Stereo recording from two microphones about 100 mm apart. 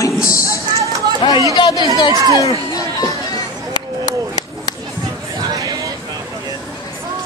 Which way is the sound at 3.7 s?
40° left (ahead or behind).